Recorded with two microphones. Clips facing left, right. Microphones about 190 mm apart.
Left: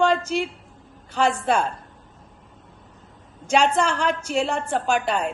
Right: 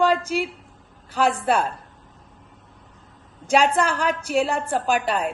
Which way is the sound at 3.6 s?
10° right (ahead or behind).